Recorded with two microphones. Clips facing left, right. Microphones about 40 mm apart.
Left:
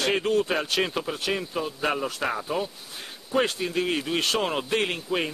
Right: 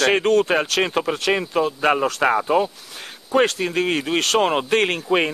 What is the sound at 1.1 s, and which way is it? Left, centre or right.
Speech, right.